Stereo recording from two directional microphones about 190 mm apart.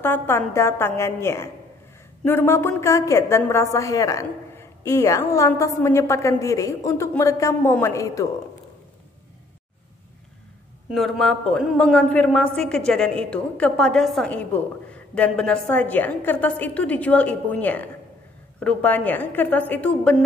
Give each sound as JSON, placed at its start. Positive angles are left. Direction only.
{"t": 0.0, "sound": "a man's voice", "side_deg": 10}
{"t": 10.9, "sound": "a man's voice", "side_deg": 0}